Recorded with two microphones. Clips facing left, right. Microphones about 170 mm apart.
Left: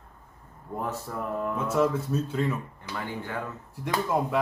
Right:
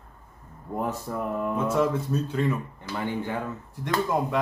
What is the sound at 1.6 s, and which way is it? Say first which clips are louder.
Speech: even; 5° left (ahead or behind).